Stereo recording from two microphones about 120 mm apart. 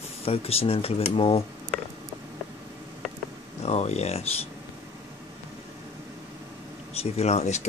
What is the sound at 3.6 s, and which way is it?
Speech, 65° left (ahead or behind).